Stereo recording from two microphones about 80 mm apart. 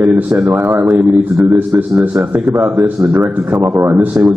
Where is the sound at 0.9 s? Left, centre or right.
Centre.